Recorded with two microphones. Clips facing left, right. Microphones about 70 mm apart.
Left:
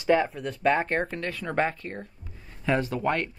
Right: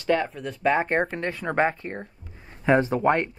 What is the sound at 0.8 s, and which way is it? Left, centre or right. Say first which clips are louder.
Speech: right 3 dB; centre.